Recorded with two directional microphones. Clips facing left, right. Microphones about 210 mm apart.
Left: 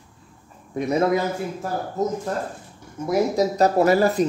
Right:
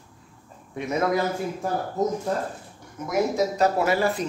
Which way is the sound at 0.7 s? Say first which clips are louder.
Left 5 dB; 35° left (ahead or behind).